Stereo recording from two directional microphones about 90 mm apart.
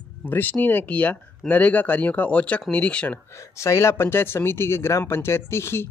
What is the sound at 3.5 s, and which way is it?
Speech, 30° left (ahead or behind).